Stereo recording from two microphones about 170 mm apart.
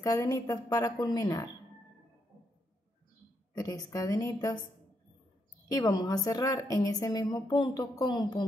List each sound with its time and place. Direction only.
0.0 s a woman's voice: 20° left (ahead or behind)
3.5 s a woman's voice: 20° left (ahead or behind)
5.7 s a woman's voice: 20° left (ahead or behind)